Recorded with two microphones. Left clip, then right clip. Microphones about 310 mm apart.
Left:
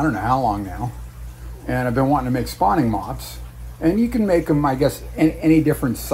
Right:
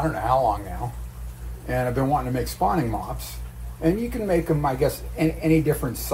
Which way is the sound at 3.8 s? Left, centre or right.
Left.